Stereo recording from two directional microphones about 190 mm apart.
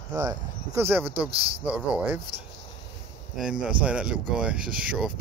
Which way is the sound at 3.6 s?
5° right (ahead or behind).